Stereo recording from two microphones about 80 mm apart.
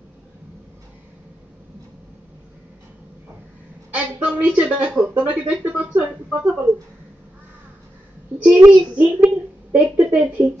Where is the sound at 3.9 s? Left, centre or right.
Centre.